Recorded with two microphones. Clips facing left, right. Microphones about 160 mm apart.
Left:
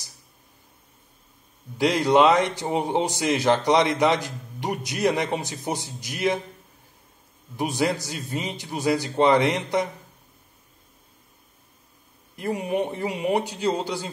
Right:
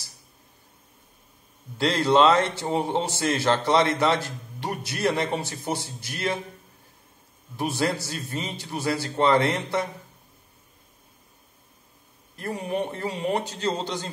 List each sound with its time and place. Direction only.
1.8 s a man's voice: 15° left (ahead or behind)
7.5 s a man's voice: 15° left (ahead or behind)
12.4 s a man's voice: 15° left (ahead or behind)